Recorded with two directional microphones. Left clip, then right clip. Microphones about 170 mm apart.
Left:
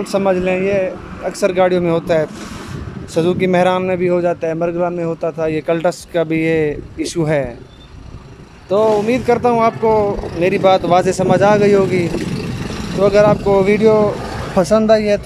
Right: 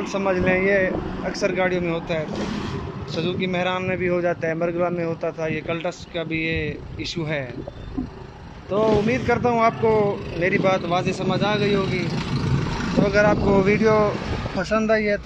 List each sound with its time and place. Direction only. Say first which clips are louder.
0.0 s speech: left 6 dB; 25° left (ahead or behind)
1.4 s a man's voice: left 9 dB; 25° left (ahead or behind)
8.6 s a man's voice: left 6 dB; 20° left (ahead or behind)
13.0 s a man's voice: left 8 dB; 20° left (ahead or behind)
14.6 s speech: left 10 dB; 35° left (ahead or behind)
14.9 s a man's voice: left 8 dB; 20° left (ahead or behind)